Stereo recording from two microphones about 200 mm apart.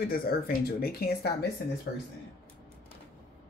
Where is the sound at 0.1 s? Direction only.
50° left (ahead or behind).